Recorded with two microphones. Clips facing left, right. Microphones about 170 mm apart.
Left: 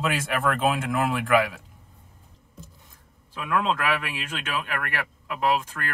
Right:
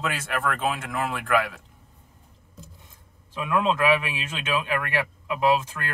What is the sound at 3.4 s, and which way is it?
Speech, 20° right (ahead or behind).